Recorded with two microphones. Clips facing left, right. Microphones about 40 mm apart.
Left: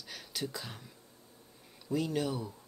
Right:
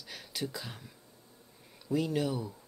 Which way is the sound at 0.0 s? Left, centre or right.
Centre.